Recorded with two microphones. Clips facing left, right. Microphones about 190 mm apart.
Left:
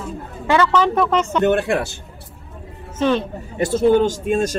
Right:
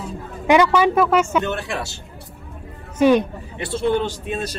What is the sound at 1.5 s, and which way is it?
Speech, 55° left (ahead or behind).